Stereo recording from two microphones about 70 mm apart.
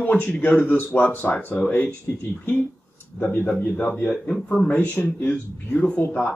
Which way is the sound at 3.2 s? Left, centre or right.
Left.